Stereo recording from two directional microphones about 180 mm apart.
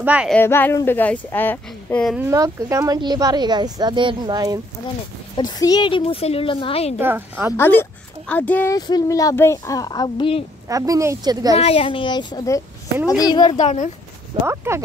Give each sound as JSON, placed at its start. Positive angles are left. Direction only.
{"t": 0.0, "sound": "a woman's voice", "side_deg": -5}
{"t": 0.3, "sound": "speech", "side_deg": 10}
{"t": 2.1, "sound": "speech", "side_deg": -15}
{"t": 5.3, "sound": "speech", "side_deg": 20}
{"t": 7.0, "sound": "a woman's voice", "side_deg": -10}
{"t": 7.5, "sound": "speech", "side_deg": 10}
{"t": 8.7, "sound": "speech", "side_deg": 20}
{"t": 10.7, "sound": "speech", "side_deg": -20}
{"t": 11.5, "sound": "speech", "side_deg": 30}
{"t": 13.6, "sound": "speech", "side_deg": 40}
{"t": 14.4, "sound": "a woman's voice", "side_deg": -15}